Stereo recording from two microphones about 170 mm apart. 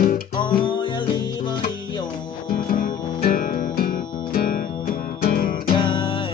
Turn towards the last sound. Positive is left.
turn(degrees=30)  # may be behind; listen again after turning